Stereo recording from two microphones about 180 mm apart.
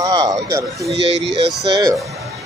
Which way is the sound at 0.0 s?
20° right (ahead or behind).